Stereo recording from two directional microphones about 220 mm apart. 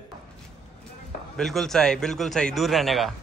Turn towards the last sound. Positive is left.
turn(degrees=0)  # may be behind; listen again after turning